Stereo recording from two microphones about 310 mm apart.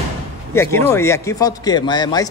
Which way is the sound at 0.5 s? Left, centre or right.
Centre.